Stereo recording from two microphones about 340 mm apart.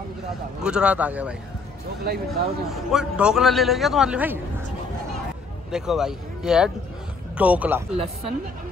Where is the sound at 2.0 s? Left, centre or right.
Right.